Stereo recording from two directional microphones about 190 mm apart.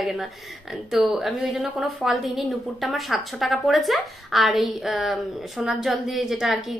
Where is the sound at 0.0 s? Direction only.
Centre (ahead or behind).